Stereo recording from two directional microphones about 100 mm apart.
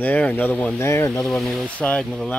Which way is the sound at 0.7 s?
25° left (ahead or behind).